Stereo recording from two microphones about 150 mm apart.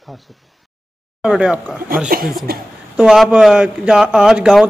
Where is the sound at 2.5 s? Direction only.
90° right.